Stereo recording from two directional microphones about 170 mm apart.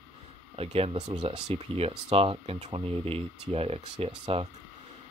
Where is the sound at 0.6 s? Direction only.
35° right (ahead or behind).